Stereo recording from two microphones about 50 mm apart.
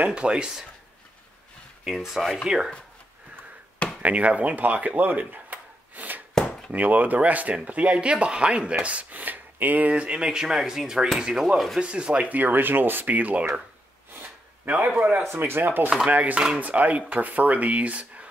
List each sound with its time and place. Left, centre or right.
0.0 s speech: right
1.9 s speech: centre
2.4 s speech: centre
4.0 s speech: right
6.3 s chop: centre
6.7 s speech: right
9.9 s speech: centre
14.7 s speech: right
15.3 s speech: right